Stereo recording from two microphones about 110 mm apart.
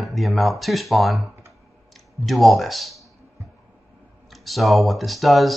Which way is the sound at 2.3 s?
Centre (ahead or behind).